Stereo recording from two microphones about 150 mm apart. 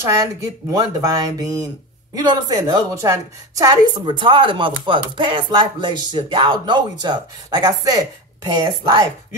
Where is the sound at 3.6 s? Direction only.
30° right (ahead or behind).